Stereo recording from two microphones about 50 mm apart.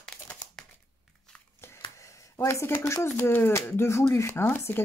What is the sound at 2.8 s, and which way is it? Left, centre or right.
Speech, left.